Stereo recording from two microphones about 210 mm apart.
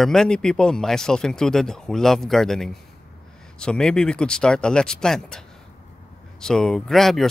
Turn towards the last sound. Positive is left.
turn(degrees=0)  # may be behind; listen again after turning